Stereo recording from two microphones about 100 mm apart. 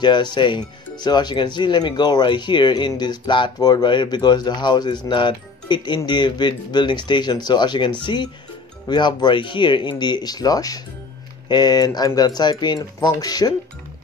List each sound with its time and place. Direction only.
0.0 s speech: 50° left (ahead or behind)